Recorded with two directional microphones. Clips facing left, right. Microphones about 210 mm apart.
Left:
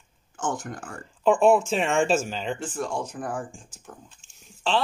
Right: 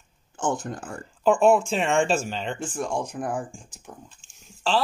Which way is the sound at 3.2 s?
15° right (ahead or behind).